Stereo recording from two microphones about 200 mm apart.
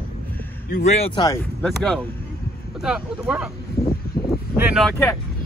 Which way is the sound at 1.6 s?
5° left (ahead or behind).